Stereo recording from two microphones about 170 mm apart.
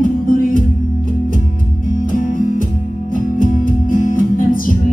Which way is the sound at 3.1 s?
55° left (ahead or behind).